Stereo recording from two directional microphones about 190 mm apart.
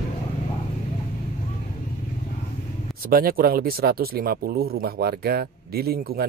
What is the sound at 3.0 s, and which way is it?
Speech, 50° right (ahead or behind).